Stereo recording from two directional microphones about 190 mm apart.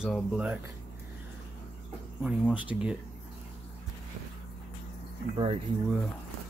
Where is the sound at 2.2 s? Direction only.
5° right (ahead or behind).